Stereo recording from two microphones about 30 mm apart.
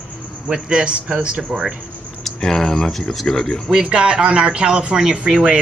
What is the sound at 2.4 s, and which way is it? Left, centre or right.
Speech, centre.